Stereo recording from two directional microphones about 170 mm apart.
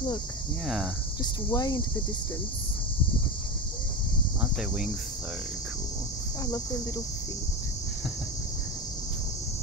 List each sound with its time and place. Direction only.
1.2 s speech: 25° left (ahead or behind)
4.4 s speech: 5° right (ahead or behind)